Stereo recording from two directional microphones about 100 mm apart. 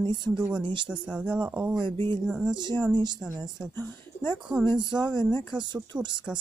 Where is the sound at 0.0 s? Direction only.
55° right (ahead or behind).